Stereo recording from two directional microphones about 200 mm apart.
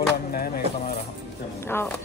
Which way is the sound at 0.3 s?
50° left (ahead or behind).